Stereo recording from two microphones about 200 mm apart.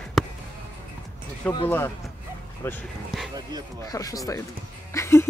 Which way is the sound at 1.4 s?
5° left (ahead or behind).